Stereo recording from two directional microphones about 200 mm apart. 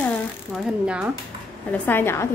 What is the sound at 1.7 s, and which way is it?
Speech, 10° left (ahead or behind).